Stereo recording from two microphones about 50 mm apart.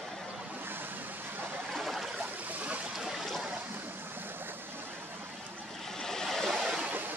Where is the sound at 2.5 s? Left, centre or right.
Right.